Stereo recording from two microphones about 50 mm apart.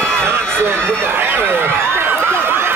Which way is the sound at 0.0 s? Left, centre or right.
Right.